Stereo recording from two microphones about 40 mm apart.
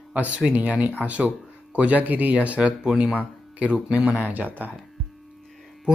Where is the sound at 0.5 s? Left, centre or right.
Right.